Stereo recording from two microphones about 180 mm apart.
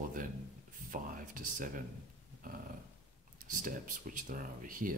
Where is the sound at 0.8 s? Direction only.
50° right (ahead or behind).